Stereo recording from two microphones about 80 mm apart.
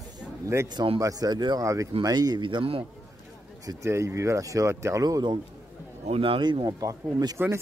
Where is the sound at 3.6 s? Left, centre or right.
Right.